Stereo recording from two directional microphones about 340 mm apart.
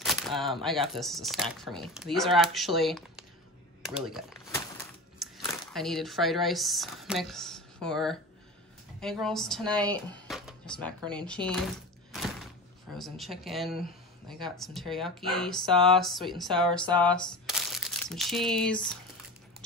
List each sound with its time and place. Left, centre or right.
0.0 s speech: centre
4.6 s a sound: centre
9.0 s speech: centre
12.9 s speech: centre